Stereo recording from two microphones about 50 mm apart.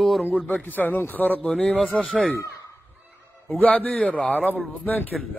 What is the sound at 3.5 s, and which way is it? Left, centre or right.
A man's voice, left.